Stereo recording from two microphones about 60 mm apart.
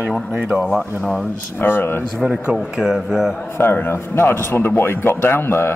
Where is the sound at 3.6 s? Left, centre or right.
Left.